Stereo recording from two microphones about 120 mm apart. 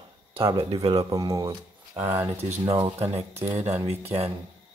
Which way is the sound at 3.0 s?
60° right (ahead or behind).